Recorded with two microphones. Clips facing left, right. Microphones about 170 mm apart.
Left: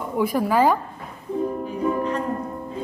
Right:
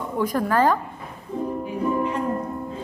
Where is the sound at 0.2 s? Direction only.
10° left (ahead or behind).